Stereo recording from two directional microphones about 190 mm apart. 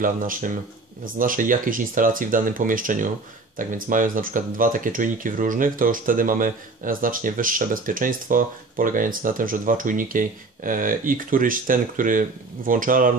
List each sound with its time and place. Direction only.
0.0 s speech: 45° right (ahead or behind)